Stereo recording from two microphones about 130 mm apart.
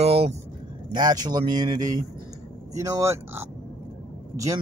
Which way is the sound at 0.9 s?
30° right (ahead or behind).